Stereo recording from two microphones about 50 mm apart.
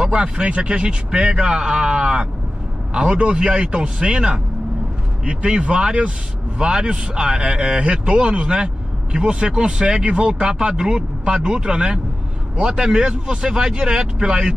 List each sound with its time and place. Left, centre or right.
0.0 s a man's voice: right